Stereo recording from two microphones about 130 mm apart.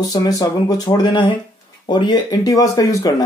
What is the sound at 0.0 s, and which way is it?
Speech, 30° left (ahead or behind).